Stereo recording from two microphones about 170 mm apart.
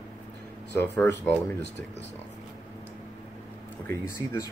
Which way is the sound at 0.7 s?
15° left (ahead or behind).